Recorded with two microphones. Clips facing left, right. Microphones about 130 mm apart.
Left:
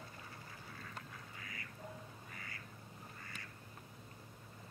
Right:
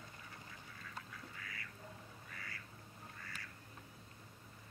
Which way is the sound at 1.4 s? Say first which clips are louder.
Even; 25° left (ahead or behind).